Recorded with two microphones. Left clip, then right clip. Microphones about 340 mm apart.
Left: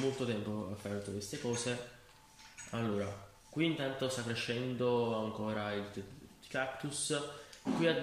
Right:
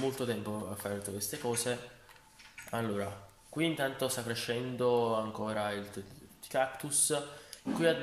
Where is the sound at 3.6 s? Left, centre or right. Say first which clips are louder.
Right 3 dB; centre.